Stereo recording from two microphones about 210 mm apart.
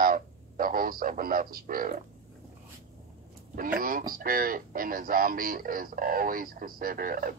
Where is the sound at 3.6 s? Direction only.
40° right (ahead or behind).